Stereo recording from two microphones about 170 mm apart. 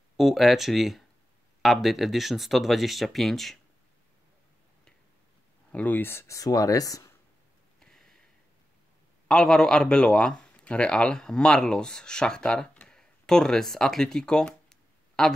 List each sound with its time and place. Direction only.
0.2 s speech: centre (ahead or behind)
5.7 s speech: 10° left (ahead or behind)
7.8 s a sound: 5° left (ahead or behind)
9.3 s speech: 5° left (ahead or behind)